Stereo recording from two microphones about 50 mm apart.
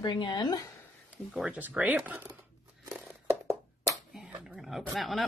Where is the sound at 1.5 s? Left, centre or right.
Right.